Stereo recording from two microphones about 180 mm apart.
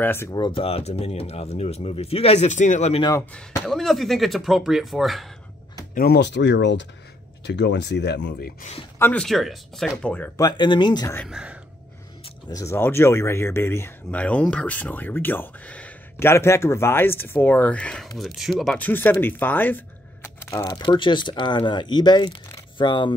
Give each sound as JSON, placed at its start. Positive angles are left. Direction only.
{"t": 0.0, "sound": "speech", "side_deg": 15}
{"t": 3.0, "sound": "speech", "side_deg": 20}
{"t": 3.6, "sound": "speech", "side_deg": 0}
{"t": 5.9, "sound": "speech", "side_deg": 65}
{"t": 8.9, "sound": "speech", "side_deg": 10}
{"t": 10.4, "sound": "speech", "side_deg": 25}
{"t": 11.2, "sound": "speech", "side_deg": -5}
{"t": 12.4, "sound": "speech", "side_deg": 20}